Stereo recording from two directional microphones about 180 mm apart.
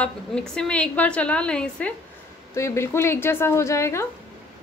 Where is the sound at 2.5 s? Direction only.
15° left (ahead or behind).